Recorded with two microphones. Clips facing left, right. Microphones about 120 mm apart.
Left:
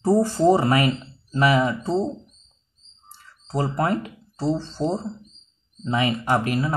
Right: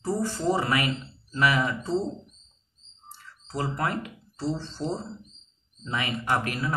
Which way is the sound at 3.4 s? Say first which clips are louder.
Left 6 dB; 30° left (ahead or behind).